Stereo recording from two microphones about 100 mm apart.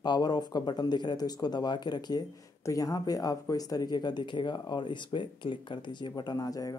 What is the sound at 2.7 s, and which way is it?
Speech, 35° left (ahead or behind).